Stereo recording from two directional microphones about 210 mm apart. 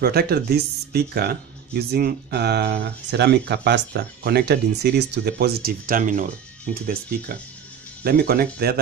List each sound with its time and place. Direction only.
0.0 s speech: 45° right (ahead or behind)